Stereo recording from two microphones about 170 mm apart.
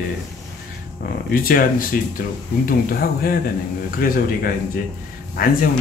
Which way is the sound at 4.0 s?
55° left (ahead or behind).